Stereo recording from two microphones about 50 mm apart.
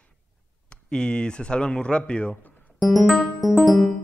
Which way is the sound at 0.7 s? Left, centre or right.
Centre.